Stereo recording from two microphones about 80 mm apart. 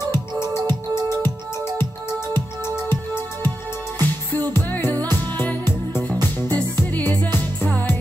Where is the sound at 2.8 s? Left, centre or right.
Left.